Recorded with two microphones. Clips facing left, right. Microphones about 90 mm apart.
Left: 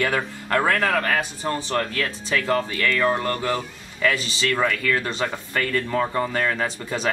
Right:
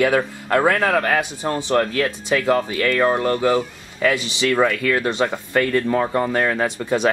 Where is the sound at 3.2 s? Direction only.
20° right (ahead or behind).